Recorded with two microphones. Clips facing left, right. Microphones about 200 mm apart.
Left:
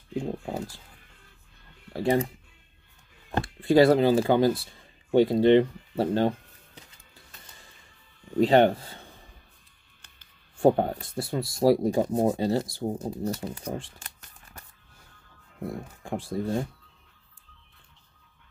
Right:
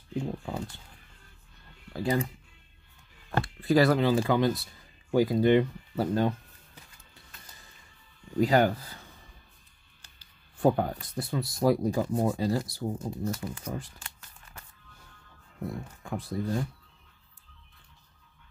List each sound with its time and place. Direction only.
0.2 s speech: 35° left (ahead or behind)
1.9 s speech: 30° left (ahead or behind)
8.4 s speech: 25° left (ahead or behind)
10.6 s speech: 30° left (ahead or behind)
16.0 s speech: 30° left (ahead or behind)